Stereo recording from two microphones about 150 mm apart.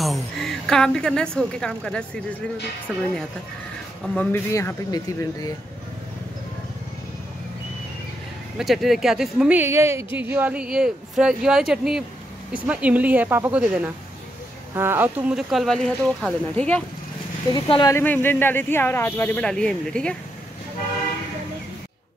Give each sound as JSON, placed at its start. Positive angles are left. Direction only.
{"t": 0.0, "sound": "a woman's voice", "side_deg": 0}
{"t": 4.1, "sound": "speech", "side_deg": 10}
{"t": 8.5, "sound": "a woman's voice", "side_deg": 0}
{"t": 17.5, "sound": "speech", "side_deg": 30}
{"t": 17.9, "sound": "speech", "side_deg": 15}